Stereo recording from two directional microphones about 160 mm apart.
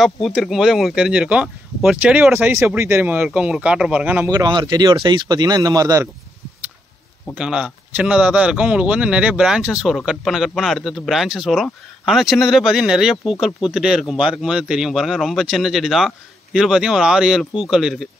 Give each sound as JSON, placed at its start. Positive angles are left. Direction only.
{"t": 0.0, "sound": "speech", "side_deg": 0}
{"t": 4.4, "sound": "speech", "side_deg": -25}
{"t": 7.3, "sound": "speech", "side_deg": -5}